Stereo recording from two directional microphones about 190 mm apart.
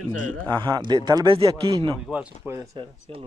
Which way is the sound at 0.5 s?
25° right (ahead or behind).